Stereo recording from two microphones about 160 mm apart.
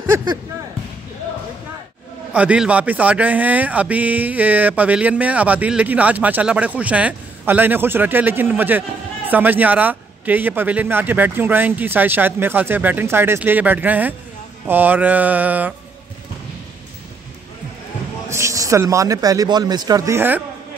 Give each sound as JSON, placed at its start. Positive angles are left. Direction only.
{"t": 2.3, "sound": "a man's voice", "side_deg": -5}
{"t": 18.3, "sound": "speech", "side_deg": -20}